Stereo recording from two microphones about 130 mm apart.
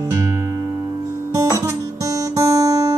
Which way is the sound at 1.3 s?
25° right (ahead or behind).